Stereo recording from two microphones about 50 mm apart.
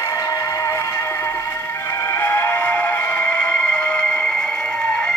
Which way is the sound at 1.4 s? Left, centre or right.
Left.